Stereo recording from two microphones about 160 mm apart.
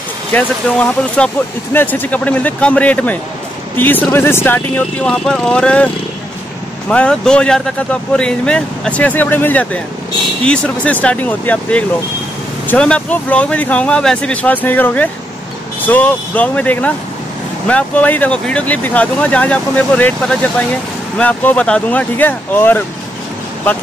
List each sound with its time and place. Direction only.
0.3 s speech: 10° left (ahead or behind)
6.9 s speech: 5° left (ahead or behind)